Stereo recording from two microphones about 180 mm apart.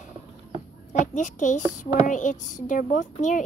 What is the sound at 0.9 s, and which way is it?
Speech, 45° left (ahead or behind).